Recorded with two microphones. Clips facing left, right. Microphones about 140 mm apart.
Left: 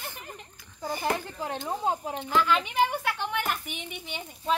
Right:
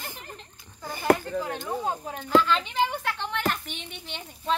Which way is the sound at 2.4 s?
10° left (ahead or behind).